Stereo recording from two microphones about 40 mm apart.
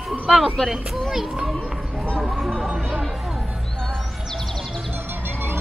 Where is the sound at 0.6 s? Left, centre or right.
Centre.